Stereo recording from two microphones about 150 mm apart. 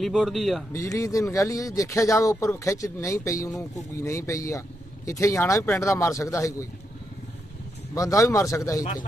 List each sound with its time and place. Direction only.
0.0 s a man's voice: centre (ahead or behind)
0.7 s a man's voice: 20° left (ahead or behind)
7.9 s a man's voice: 20° left (ahead or behind)